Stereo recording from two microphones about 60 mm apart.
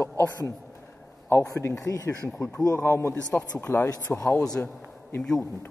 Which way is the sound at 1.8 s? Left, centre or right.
Left.